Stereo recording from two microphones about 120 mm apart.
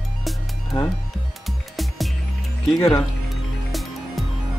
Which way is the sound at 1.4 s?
Centre (ahead or behind).